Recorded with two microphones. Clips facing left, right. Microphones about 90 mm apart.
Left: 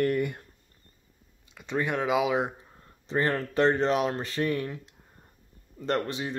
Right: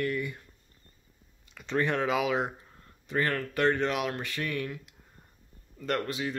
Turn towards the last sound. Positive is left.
turn(degrees=25)  # may be behind; listen again after turning